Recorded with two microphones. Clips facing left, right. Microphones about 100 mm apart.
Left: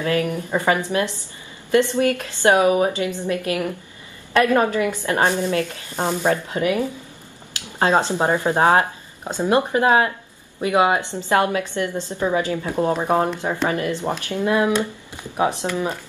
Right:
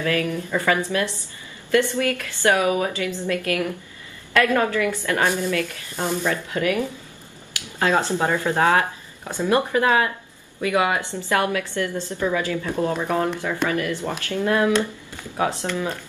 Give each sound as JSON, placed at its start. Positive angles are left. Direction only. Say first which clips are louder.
{"t": 0.0, "sound": "speech", "louder": "left 2 dB", "side_deg": 25}
{"t": 6.5, "sound": "speech", "louder": "left 2 dB", "side_deg": 20}